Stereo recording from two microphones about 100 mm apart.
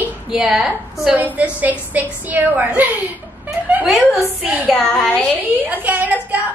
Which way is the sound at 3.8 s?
Centre (ahead or behind).